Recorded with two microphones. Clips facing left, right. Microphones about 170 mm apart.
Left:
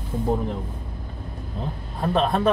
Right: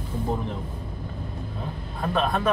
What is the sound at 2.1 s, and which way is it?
Speech, 30° left (ahead or behind).